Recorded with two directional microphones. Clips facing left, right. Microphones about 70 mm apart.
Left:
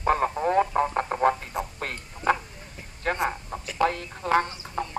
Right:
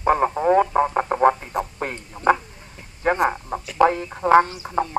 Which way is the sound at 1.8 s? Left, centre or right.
Centre.